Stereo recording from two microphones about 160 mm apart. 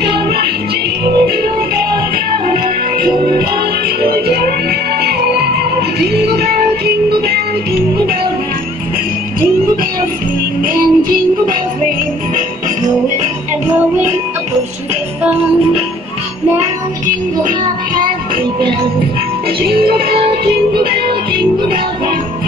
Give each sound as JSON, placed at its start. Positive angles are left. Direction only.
{"t": 1.0, "sound": "music", "side_deg": -75}
{"t": 5.0, "sound": "music", "side_deg": -80}
{"t": 10.6, "sound": "music", "side_deg": -60}
{"t": 19.6, "sound": "music", "side_deg": -70}